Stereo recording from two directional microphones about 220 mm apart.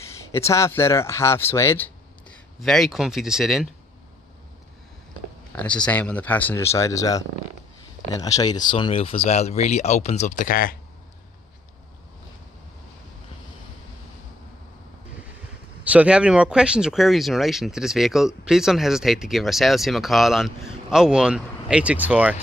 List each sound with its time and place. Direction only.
0.3 s speech: 10° left (ahead or behind)
5.6 s speech: 5° left (ahead or behind); by 10.8 s 40° left (ahead or behind)
15.8 s speech: 5° right (ahead or behind)